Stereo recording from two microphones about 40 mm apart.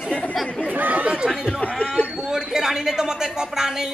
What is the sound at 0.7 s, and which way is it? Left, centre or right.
Speech, right.